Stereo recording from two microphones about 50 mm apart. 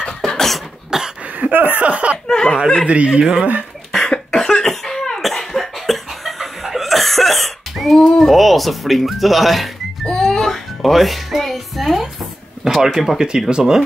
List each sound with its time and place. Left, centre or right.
0.2 s cough: centre
0.8 s a sound: centre
1.3 s a sound: right
2.2 s chuckle: centre
3.1 s speech: right
3.9 s cough: centre
10.0 s music: centre
12.7 s speech: centre